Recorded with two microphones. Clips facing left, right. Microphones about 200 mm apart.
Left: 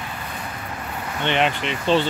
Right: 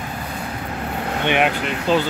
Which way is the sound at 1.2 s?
10° right (ahead or behind).